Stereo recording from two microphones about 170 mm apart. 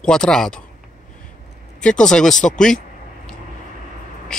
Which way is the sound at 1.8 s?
5° left (ahead or behind).